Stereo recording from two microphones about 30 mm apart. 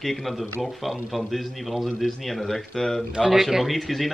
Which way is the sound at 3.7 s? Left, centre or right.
Centre.